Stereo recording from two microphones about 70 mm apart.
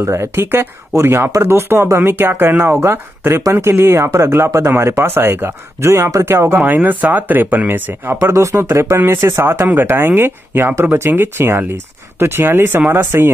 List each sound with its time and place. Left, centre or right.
0.0 s speech: right
6.5 s speech: right
8.2 s speech: right